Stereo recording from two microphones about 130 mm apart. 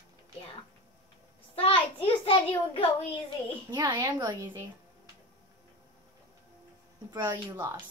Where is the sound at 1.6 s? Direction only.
45° left (ahead or behind).